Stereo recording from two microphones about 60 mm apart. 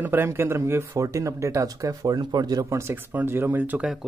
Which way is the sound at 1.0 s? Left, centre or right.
Right.